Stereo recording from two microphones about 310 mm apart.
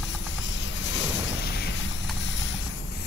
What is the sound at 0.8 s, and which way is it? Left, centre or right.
Boat, left.